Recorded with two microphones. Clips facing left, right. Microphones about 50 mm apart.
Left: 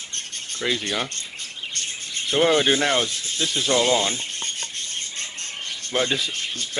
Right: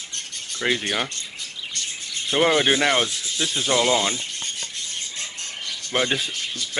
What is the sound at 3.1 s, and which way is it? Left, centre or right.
Snake, left.